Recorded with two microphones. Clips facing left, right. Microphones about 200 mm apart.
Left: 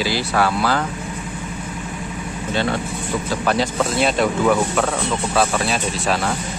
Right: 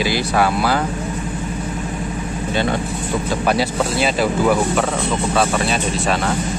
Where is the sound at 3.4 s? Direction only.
10° right (ahead or behind).